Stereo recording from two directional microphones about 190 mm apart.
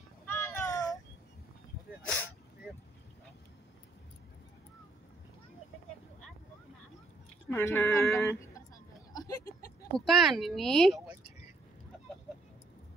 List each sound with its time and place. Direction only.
0.3 s child singing: 10° left (ahead or behind)
7.4 s a woman's voice: 10° left (ahead or behind)
9.1 s a sound: 20° left (ahead or behind)
9.9 s speech: centre (ahead or behind)